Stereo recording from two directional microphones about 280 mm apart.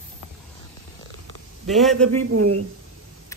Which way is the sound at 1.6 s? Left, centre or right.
Centre.